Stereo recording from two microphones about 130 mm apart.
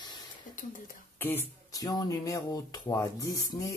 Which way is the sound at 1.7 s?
30° left (ahead or behind).